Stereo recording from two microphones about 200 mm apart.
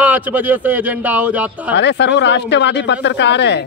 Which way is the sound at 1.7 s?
60° left (ahead or behind).